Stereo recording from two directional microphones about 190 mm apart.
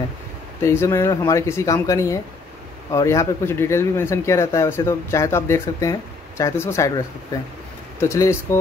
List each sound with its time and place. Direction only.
0.6 s speech: 15° left (ahead or behind)
8.0 s speech: 15° left (ahead or behind)